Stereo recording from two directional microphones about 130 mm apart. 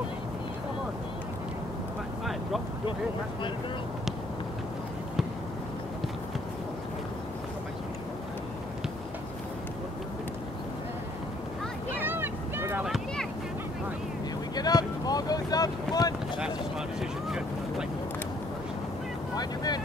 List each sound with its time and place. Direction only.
12.0 s vehicle: 15° right (ahead or behind)
12.8 s a sound: centre (ahead or behind)
14.5 s boat: 30° left (ahead or behind)
17.0 s boat: 5° right (ahead or behind)
19.3 s boat: 30° left (ahead or behind)